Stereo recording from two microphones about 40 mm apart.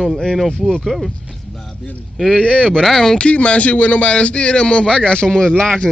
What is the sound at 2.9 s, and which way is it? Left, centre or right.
Speech, centre.